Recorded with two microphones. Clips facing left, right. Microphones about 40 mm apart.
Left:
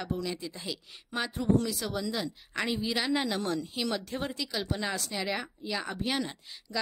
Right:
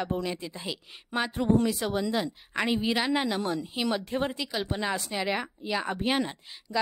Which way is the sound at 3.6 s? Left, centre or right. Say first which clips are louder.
Right 3 dB; centre.